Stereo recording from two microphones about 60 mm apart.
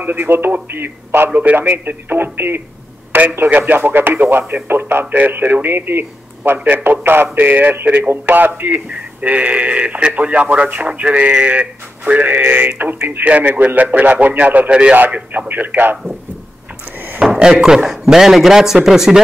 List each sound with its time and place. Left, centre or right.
0.0 s speech: right
17.2 s speech: centre